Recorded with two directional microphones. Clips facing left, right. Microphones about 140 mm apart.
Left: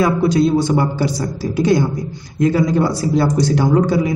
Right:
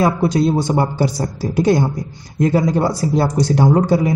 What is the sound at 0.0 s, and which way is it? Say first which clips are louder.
A man's voice: left 1 dB; 40° right (ahead or behind).